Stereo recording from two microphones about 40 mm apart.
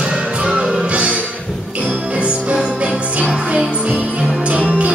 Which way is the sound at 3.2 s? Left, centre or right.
Right.